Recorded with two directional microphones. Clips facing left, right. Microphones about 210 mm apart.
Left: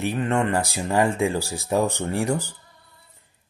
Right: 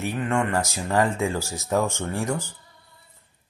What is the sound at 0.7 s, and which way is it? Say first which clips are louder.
Speech: left 1 dB; 15° left (ahead or behind).